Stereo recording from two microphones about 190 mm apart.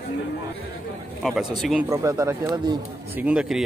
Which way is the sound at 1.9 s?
15° right (ahead or behind).